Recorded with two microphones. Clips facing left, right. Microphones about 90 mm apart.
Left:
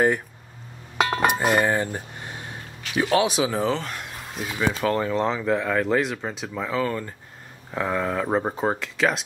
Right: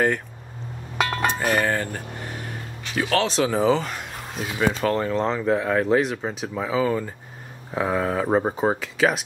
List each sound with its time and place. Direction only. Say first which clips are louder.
0.9 s chink: left 1 dB; 5° left (ahead or behind)
1.4 s speech: left 1 dB; 10° left (ahead or behind)